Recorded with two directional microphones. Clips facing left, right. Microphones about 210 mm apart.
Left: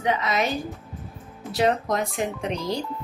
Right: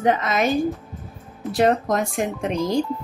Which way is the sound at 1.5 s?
50° right (ahead or behind).